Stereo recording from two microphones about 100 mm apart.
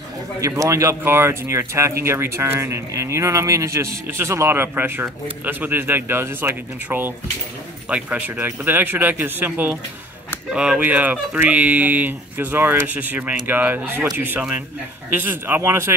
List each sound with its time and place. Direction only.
0.4 s speech: 30° right (ahead or behind)